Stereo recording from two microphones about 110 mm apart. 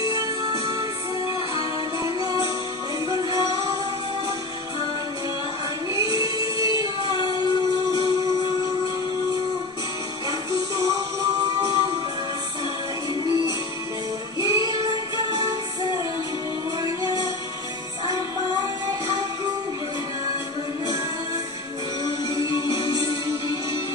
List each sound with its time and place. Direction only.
0.0 s music: 30° right (ahead or behind)
5.9 s music: 35° right (ahead or behind)
10.5 s music: 35° right (ahead or behind)
13.2 s music: 35° right (ahead or behind)
14.5 s music: 30° right (ahead or behind)
22.7 s music: 30° right (ahead or behind)